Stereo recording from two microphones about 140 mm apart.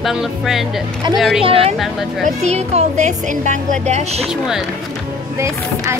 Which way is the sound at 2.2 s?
50° right (ahead or behind).